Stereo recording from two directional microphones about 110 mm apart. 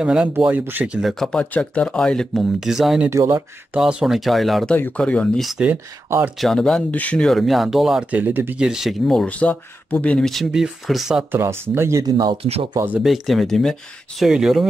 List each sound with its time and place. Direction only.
0.0 s speech: 10° right (ahead or behind)
1.0 s speech: 5° left (ahead or behind)
3.1 s speech: 25° right (ahead or behind)
3.7 s speech: 5° right (ahead or behind)
4.7 s speech: 15° left (ahead or behind)
5.7 s speech: 20° right (ahead or behind)
6.3 s speech: centre (ahead or behind); by 8.6 s 15° right (ahead or behind)
8.6 s speech: 5° right (ahead or behind)
11.3 s speech: 20° right (ahead or behind)
12.7 s speech: 20° right (ahead or behind)
13.0 s speech: centre (ahead or behind)